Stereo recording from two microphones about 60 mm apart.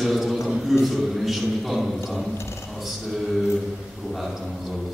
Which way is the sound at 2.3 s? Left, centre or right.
Left.